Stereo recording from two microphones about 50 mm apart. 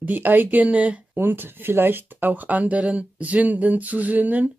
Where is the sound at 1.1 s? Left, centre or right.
Right.